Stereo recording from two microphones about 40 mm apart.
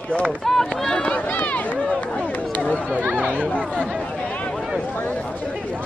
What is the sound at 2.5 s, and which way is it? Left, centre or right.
Chatter, left.